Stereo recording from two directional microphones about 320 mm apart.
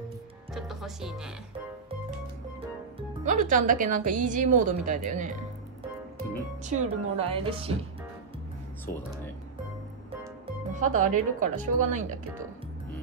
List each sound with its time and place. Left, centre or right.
0.6 s speech: centre
3.0 s music: right
3.6 s a woman's voice: right
6.6 s a woman's voice: right
10.4 s speech: right